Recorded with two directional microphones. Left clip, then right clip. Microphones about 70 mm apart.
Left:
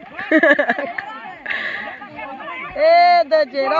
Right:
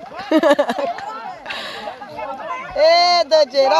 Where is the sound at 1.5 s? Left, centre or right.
Right.